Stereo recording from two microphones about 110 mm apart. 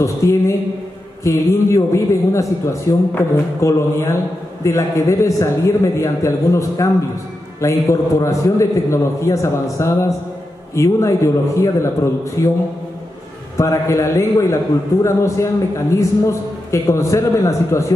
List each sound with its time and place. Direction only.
0.0 s a man's voice: 25° left (ahead or behind)
13.6 s a man's voice: 25° left (ahead or behind)